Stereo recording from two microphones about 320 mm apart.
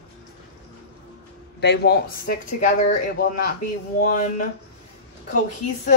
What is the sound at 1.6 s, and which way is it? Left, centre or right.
Speech, left.